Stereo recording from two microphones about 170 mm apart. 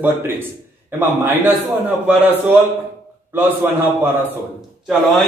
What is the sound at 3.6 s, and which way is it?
Speech, 15° right (ahead or behind).